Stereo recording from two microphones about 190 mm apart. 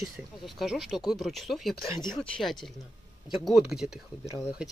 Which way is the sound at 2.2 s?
Centre (ahead or behind).